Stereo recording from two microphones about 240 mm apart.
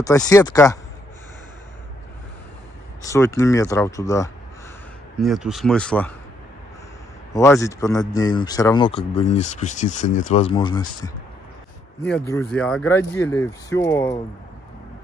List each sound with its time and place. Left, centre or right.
0.3 s speech: centre
3.0 s speech: centre
5.2 s speech: centre
7.3 s speech: centre
12.3 s speech: centre